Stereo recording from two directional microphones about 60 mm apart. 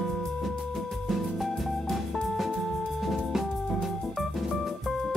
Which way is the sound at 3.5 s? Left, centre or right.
Centre.